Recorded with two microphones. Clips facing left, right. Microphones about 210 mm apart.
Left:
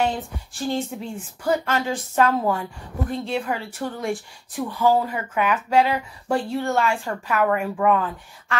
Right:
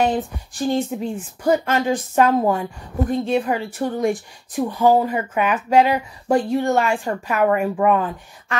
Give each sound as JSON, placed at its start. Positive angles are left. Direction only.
{"t": 0.0, "sound": "a woman's voice", "side_deg": -15}